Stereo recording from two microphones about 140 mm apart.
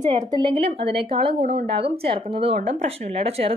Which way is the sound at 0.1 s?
35° right (ahead or behind).